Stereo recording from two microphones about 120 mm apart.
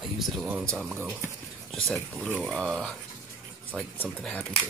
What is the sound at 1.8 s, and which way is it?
Speech, 5° left (ahead or behind).